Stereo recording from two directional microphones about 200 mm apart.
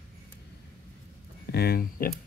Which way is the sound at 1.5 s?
50° left (ahead or behind).